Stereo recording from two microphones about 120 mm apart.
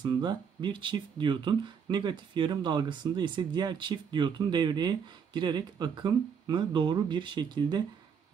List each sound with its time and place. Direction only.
0.0 s speech: 40° right (ahead or behind)